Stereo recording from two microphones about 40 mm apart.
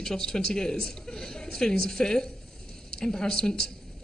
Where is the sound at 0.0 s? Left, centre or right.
Centre.